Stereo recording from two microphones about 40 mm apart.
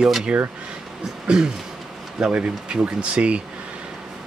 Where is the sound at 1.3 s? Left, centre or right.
Centre.